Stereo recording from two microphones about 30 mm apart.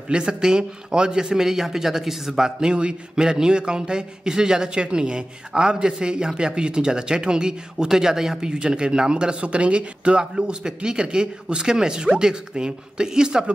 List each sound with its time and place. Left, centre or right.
0.1 s a man's voice: right
2.7 s a man's voice: right
9.4 s speech: right
10.3 s a man's voice: right